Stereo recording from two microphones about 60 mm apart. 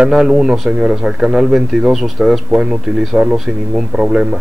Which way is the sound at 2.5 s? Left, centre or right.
Centre.